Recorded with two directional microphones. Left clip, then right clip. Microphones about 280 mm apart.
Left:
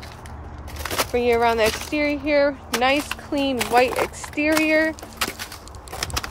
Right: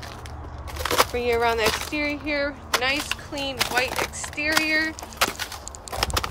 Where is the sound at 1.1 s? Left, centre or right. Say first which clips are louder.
Left 4 dB; centre.